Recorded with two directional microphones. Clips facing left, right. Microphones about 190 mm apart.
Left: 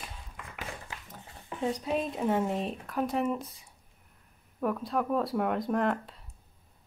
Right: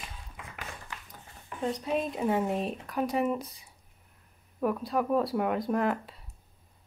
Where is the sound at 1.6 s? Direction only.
5° left (ahead or behind).